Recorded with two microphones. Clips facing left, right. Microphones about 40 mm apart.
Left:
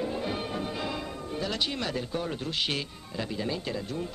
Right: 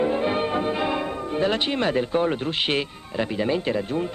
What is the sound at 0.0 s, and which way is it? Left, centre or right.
Speech, right.